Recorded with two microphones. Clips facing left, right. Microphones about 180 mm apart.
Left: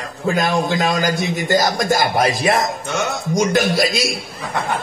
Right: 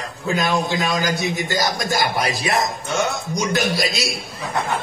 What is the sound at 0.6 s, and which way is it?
A man's voice, 50° left (ahead or behind).